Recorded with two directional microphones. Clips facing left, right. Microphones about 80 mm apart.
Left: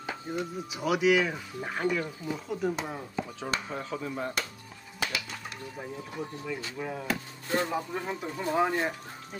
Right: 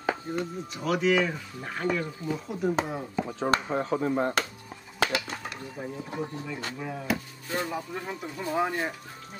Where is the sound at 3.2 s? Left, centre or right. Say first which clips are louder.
Right 7 dB; right.